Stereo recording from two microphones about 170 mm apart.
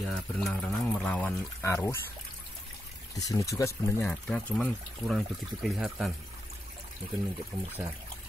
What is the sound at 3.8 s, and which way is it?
Speech, 5° left (ahead or behind).